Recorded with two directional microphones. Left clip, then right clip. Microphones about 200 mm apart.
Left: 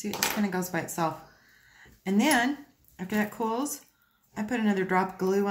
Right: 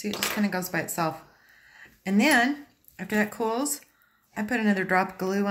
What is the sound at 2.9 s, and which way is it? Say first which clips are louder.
Speech: right 4 dB; 20° right (ahead or behind).